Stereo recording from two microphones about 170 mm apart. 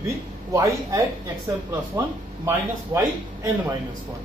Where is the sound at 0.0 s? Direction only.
20° right (ahead or behind).